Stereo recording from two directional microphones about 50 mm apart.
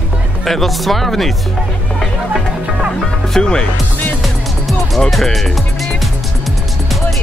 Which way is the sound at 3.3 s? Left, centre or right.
Centre.